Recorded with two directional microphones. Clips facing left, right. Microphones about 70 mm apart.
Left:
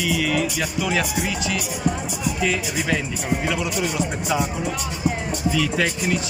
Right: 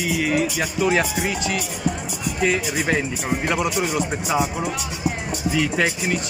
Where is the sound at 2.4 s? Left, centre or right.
Right.